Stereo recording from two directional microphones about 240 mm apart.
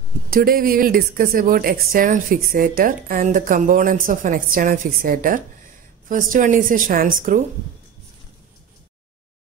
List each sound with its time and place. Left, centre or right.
0.3 s speech: right